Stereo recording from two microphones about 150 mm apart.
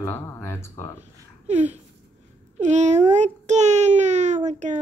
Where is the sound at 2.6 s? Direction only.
50° right (ahead or behind).